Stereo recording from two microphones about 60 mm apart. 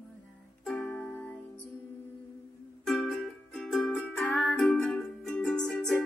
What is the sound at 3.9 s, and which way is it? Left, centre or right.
Music, left.